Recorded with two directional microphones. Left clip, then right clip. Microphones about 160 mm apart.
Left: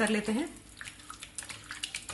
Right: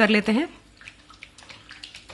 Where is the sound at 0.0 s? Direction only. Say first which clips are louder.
Right 10 dB; 55° right (ahead or behind).